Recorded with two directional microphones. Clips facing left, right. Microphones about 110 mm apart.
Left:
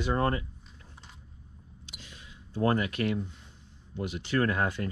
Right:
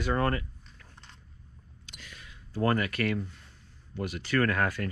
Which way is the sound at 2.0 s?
20° left (ahead or behind).